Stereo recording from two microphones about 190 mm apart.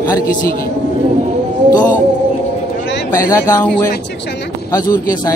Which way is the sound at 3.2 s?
15° left (ahead or behind).